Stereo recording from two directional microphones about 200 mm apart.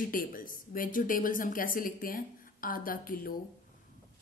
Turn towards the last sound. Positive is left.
turn(degrees=45)  # may be behind; listen again after turning